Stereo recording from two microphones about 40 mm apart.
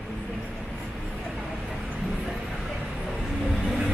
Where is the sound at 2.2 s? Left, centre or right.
Centre.